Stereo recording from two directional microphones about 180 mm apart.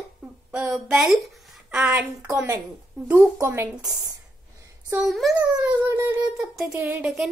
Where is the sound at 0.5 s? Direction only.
5° right (ahead or behind).